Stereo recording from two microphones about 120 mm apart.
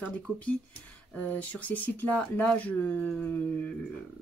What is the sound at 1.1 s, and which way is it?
Speech, 15° left (ahead or behind).